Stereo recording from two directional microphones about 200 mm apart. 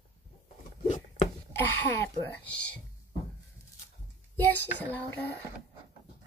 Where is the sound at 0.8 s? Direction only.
35° left (ahead or behind).